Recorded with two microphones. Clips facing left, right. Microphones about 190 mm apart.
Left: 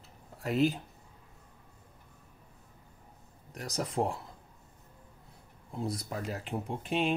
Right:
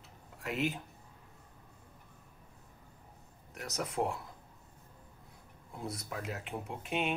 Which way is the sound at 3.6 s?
35° left (ahead or behind).